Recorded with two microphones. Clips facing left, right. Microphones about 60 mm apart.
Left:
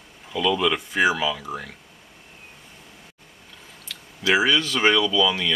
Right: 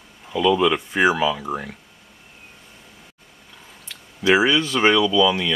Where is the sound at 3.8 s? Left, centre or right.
Centre.